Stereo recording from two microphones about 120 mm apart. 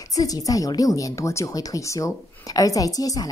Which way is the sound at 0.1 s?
30° left (ahead or behind).